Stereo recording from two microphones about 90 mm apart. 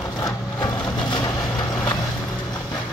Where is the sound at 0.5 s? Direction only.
50° left (ahead or behind).